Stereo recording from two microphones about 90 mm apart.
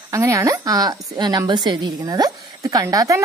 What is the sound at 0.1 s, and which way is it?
Speech, 30° right (ahead or behind).